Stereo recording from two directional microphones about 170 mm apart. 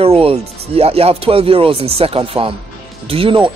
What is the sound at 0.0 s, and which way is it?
Speech, 35° right (ahead or behind).